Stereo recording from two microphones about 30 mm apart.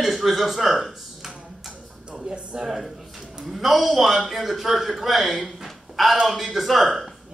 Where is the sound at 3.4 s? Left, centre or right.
Centre.